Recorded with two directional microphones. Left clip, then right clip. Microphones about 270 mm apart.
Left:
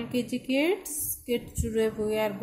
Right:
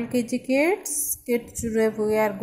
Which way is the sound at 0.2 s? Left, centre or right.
Centre.